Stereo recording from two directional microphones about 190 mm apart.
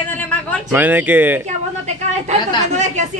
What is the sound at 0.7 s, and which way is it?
Speech, 10° right (ahead or behind).